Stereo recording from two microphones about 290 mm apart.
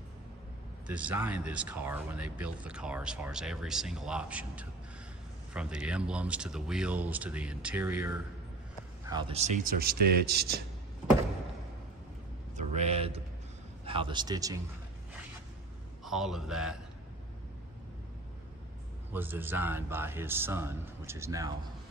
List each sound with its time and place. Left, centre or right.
0.8 s speech: centre
9.0 s a man's voice: centre; by 10.6 s right
12.5 s a sound: right
13.8 s a man's voice: centre
16.0 s a man's voice: centre
19.1 s a man's voice: centre